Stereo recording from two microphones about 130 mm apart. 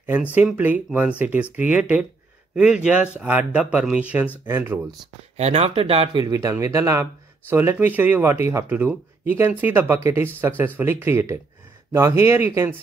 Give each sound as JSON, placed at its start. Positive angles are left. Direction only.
{"t": 0.0, "sound": "speech", "side_deg": -15}
{"t": 5.4, "sound": "speech", "side_deg": -50}
{"t": 6.2, "sound": "speech", "side_deg": -25}